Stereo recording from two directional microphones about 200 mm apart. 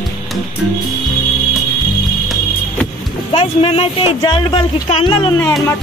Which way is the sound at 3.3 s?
25° left (ahead or behind).